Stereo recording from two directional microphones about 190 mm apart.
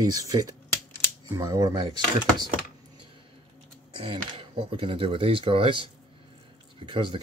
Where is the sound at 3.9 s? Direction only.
30° right (ahead or behind).